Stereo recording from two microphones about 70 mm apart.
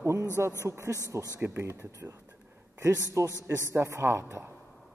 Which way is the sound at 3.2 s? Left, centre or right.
Right.